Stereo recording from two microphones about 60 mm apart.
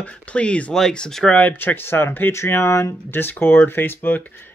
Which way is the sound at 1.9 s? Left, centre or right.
Left.